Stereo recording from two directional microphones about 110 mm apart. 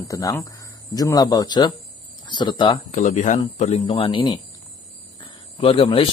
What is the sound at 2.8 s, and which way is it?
Speech, 90° left.